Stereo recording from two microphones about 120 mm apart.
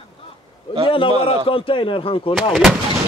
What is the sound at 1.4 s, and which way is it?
Speech, 50° left (ahead or behind).